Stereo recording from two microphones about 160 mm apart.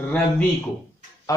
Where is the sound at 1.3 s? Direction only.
20° left (ahead or behind).